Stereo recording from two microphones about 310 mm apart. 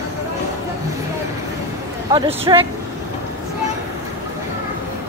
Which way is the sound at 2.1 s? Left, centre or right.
Centre.